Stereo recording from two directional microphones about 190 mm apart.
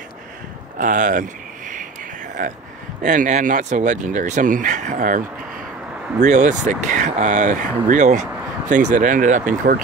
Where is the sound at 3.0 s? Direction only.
45° right (ahead or behind).